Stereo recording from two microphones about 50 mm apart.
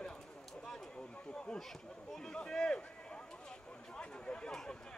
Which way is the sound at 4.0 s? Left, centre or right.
Centre.